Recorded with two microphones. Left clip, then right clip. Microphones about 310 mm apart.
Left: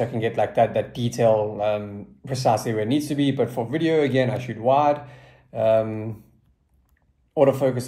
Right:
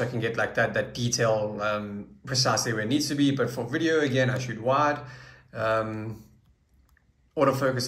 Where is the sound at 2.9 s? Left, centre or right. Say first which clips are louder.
Left 1 dB; centre.